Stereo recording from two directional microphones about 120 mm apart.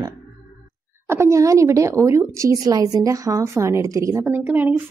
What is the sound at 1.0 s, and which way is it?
Speech, 20° right (ahead or behind).